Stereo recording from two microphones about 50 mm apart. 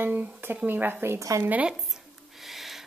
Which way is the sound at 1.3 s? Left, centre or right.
Right.